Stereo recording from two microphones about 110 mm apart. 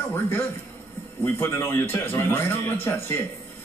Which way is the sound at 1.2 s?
20° left (ahead or behind).